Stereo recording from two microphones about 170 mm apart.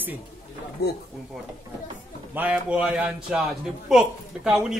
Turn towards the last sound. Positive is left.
turn(degrees=-5)  # may be behind; listen again after turning